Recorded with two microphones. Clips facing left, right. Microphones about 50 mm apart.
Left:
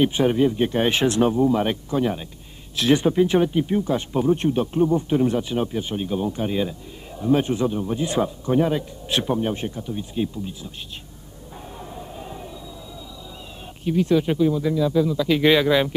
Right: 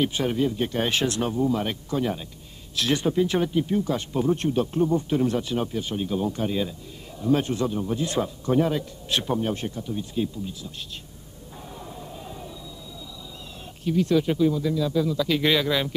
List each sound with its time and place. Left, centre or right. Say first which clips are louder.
0.0 s a man's voice: left 5 dB; left
11.8 s a sound: left 4 dB; centre
13.8 s a man's voice: left 2 dB; centre